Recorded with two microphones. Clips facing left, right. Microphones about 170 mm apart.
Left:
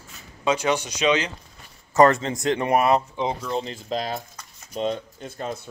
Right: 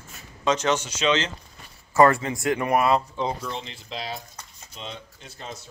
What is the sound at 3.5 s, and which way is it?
Speech, 45° left (ahead or behind).